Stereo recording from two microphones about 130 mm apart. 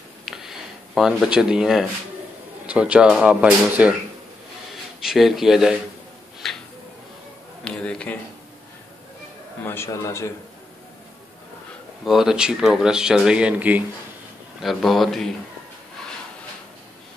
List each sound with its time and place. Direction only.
0.2 s a sound: centre (ahead or behind)
2.6 s speech: 10° right (ahead or behind)
5.0 s speech: centre (ahead or behind)
6.4 s a sound: centre (ahead or behind)
7.6 s speech: 5° left (ahead or behind)
9.6 s a man's voice: 20° left (ahead or behind)
12.0 s speech: centre (ahead or behind)
14.6 s speech: centre (ahead or behind)